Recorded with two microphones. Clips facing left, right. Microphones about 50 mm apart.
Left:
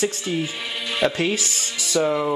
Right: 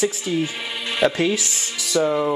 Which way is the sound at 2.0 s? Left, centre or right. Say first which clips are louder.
Right 1 dB; centre.